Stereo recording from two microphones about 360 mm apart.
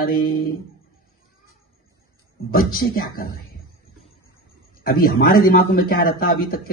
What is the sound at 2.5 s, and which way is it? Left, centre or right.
Speech, left.